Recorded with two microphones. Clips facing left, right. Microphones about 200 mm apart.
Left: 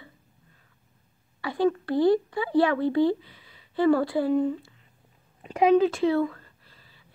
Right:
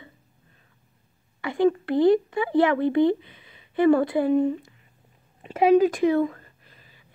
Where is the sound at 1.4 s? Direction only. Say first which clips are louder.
Right 3 dB; 20° right (ahead or behind).